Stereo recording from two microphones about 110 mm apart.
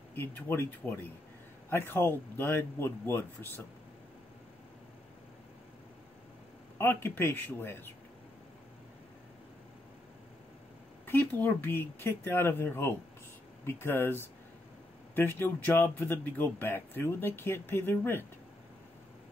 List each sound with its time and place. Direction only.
0.1 s speech: 20° left (ahead or behind)
6.8 s speech: 20° left (ahead or behind)
11.1 s speech: 20° left (ahead or behind)